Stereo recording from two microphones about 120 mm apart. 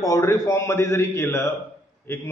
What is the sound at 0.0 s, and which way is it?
A man's voice, 25° left (ahead or behind).